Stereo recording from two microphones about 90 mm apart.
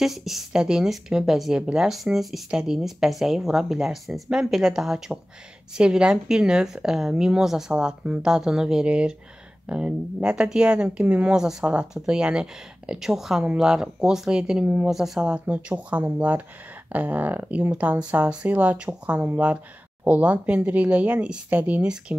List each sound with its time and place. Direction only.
0.0 s speech: centre (ahead or behind)